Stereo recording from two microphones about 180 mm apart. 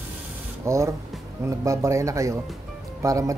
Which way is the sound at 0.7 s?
15° right (ahead or behind).